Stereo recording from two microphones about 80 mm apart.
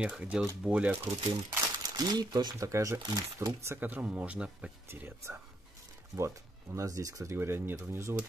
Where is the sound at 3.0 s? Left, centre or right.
Right.